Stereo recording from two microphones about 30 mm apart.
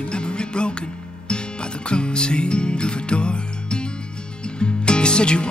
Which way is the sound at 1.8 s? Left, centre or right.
Left.